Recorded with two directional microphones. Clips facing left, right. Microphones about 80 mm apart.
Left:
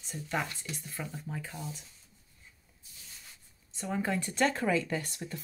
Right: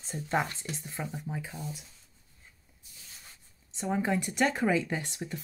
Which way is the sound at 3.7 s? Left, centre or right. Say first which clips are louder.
Right 3 dB; centre.